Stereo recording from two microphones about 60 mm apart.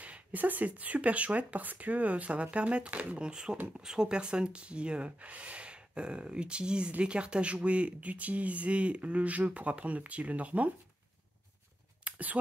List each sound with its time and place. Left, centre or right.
0.0 s speech: right
12.0 s whispering: right